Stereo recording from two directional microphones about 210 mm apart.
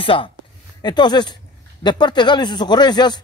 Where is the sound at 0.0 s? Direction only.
25° left (ahead or behind).